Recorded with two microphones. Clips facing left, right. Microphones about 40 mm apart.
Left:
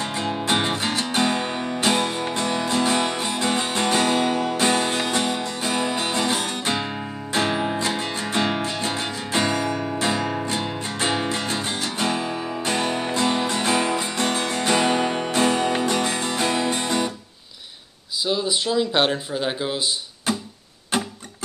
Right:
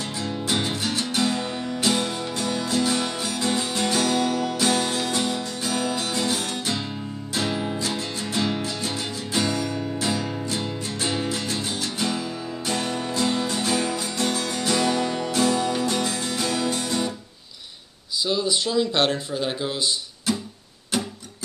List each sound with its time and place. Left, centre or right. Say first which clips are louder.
0.0 s music: left 4 dB; left
18.2 s speech: left 1 dB; centre